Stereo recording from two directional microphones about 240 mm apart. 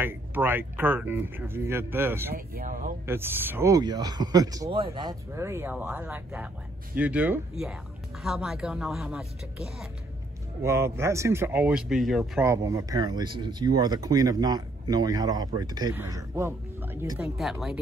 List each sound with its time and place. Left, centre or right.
0.0 s a man's voice: centre
2.3 s speech: right
3.1 s a man's voice: centre